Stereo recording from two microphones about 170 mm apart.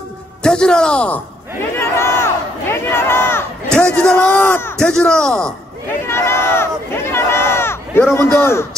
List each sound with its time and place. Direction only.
0.4 s a sound: 5° left (ahead or behind)
3.7 s a man's voice: 5° left (ahead or behind)
6.0 s speech: 15° left (ahead or behind)